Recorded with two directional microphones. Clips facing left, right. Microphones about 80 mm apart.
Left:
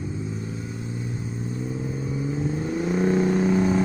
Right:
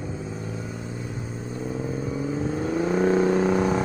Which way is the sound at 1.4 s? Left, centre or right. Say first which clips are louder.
Right 1 dB; right.